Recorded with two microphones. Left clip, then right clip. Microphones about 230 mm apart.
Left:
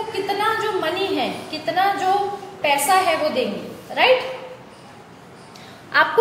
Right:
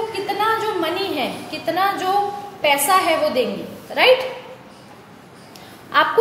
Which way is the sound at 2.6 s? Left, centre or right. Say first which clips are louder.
Right 1 dB; right.